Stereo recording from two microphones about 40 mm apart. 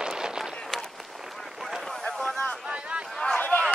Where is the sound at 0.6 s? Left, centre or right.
Centre.